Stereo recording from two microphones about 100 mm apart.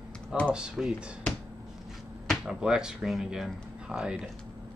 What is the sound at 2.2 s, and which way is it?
Speech, 5° right (ahead or behind).